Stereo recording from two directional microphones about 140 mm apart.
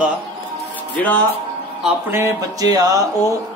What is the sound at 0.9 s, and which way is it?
Speech, 10° left (ahead or behind).